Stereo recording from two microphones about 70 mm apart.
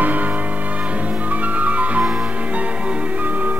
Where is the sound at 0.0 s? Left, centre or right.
Right.